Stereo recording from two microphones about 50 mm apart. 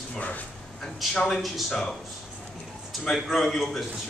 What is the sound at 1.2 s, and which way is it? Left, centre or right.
Speech, centre.